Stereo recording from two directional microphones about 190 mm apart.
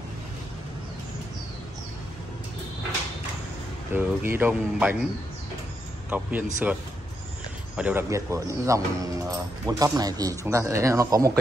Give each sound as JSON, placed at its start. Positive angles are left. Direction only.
{"t": 3.9, "sound": "speech", "side_deg": -10}
{"t": 6.0, "sound": "speech", "side_deg": -10}